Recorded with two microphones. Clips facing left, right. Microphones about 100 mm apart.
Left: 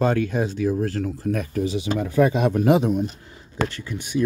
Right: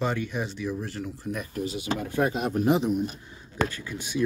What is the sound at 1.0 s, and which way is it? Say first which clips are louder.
Speech: left 8 dB; 90° left.